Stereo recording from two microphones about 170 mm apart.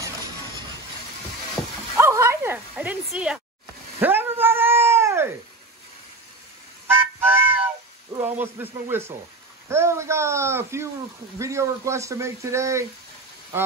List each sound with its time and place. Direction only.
0.0 s a sound: 25° right (ahead or behind)
2.0 s bow-wow: 15° right (ahead or behind)
4.0 s cat: 10° right (ahead or behind)
6.9 s music: 10° right (ahead or behind)
8.1 s speech: 15° right (ahead or behind)